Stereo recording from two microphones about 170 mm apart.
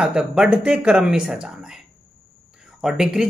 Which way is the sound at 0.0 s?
5° right (ahead or behind).